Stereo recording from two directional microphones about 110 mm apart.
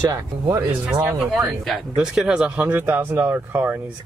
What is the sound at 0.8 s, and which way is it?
Speech, 15° right (ahead or behind).